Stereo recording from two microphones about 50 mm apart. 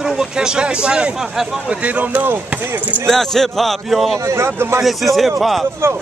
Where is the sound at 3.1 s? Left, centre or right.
Centre.